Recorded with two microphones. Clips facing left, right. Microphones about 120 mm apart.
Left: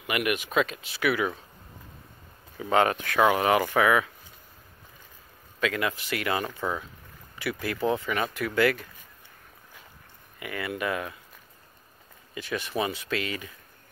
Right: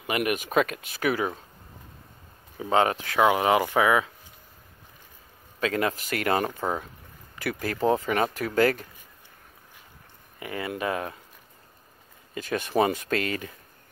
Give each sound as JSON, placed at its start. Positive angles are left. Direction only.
{"t": 0.0, "sound": "speech", "side_deg": -35}
{"t": 2.6, "sound": "speech", "side_deg": -25}
{"t": 5.6, "sound": "speech", "side_deg": -40}
{"t": 10.4, "sound": "speech", "side_deg": -30}
{"t": 12.4, "sound": "speech", "side_deg": -45}